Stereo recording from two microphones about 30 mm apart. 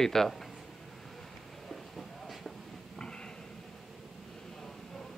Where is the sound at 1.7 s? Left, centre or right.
Centre.